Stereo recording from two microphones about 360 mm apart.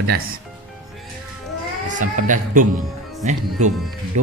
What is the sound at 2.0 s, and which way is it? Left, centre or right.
Speech, right.